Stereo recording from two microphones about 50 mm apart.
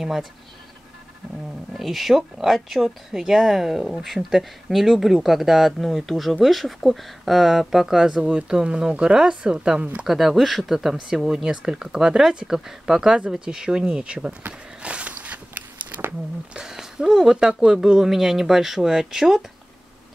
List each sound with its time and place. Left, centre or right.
0.0 s speech: centre
1.7 s speech: centre
10.0 s speech: centre
10.7 s speech: centre
14.8 s walk: right
16.5 s speech: centre